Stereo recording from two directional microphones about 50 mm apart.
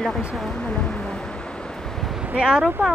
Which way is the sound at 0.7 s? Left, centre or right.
Centre.